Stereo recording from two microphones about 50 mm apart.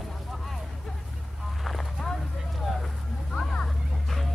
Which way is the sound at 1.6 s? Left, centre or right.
Centre.